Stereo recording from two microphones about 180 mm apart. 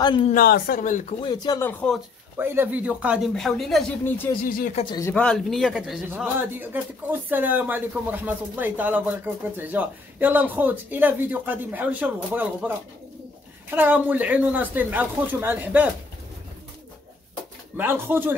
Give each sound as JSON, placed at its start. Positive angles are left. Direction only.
{"t": 0.0, "sound": "speech", "side_deg": 25}
{"t": 0.3, "sound": "speech", "side_deg": 55}
{"t": 1.2, "sound": "speech", "side_deg": 25}
{"t": 1.6, "sound": "speech", "side_deg": 5}
{"t": 2.3, "sound": "a man's voice", "side_deg": -10}
{"t": 4.5, "sound": "speech", "side_deg": 50}
{"t": 4.7, "sound": "speech", "side_deg": 25}
{"t": 5.0, "sound": "a man's voice", "side_deg": 5}
{"t": 17.7, "sound": "a man's voice", "side_deg": -10}